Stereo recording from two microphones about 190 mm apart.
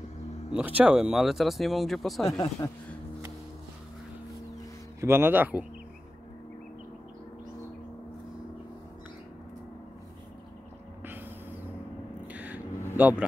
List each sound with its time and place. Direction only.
0.5 s speech: 10° right (ahead or behind)
2.2 s speech: 20° left (ahead or behind)
5.0 s a man's voice: 10° right (ahead or behind)
11.1 s a sound: 10° right (ahead or behind)
12.3 s vehicle: 10° right (ahead or behind)
12.9 s speech: 5° right (ahead or behind)